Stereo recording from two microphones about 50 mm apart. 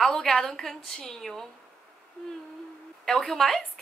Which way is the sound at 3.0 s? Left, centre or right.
Centre.